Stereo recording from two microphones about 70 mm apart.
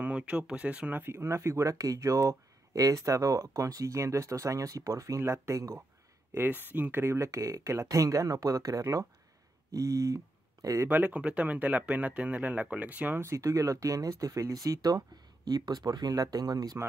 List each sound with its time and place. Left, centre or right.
0.0 s speech: centre; by 5.8 s right
6.3 s speech: right
10.9 s speech: centre
13.2 s speech: right
16.1 s speech: right